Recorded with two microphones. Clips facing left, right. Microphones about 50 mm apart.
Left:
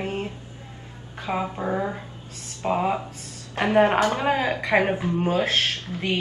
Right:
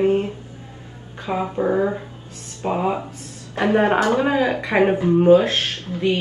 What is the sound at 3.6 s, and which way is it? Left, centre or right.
Speech, right.